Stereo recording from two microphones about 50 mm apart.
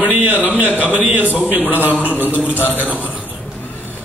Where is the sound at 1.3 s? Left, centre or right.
Right.